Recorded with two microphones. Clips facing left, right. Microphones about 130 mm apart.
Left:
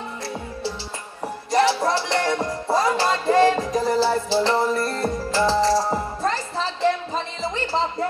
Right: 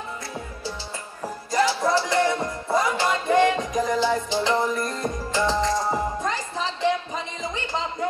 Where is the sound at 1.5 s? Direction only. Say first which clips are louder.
Left 2 dB; 30° left (ahead or behind).